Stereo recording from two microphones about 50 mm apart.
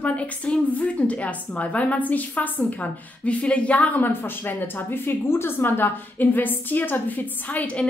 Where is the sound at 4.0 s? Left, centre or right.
Left.